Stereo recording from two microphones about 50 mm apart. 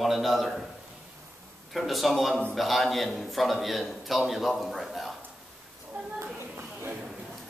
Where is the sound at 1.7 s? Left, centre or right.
Centre.